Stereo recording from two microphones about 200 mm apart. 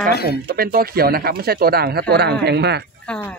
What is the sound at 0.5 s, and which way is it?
Speech, 50° right (ahead or behind).